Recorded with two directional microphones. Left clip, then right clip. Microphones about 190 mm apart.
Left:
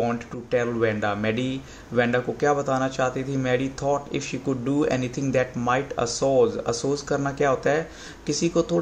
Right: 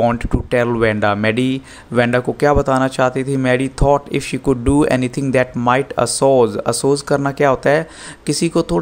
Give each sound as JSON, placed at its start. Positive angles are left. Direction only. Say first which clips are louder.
{"t": 0.0, "sound": "speech", "louder": "right 10 dB", "side_deg": -40}